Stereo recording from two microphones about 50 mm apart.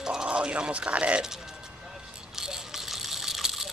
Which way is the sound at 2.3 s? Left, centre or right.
Centre.